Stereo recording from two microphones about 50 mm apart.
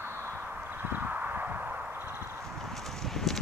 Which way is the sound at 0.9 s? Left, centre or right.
Right.